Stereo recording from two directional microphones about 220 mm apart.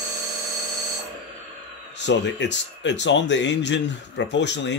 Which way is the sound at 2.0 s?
55° left (ahead or behind).